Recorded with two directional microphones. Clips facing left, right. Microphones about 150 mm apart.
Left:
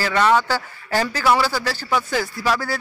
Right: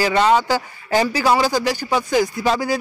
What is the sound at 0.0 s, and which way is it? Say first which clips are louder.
Speech: right 2 dB; 20° right (ahead or behind).